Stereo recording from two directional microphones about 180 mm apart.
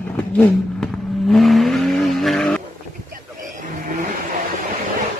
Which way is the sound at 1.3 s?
Centre (ahead or behind).